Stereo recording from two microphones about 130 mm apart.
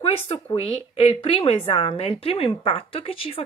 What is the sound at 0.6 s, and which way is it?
Speech, 45° left (ahead or behind).